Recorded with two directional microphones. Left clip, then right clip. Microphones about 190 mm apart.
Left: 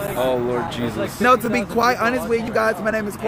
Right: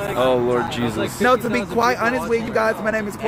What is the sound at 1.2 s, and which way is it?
Speech, 25° left (ahead or behind).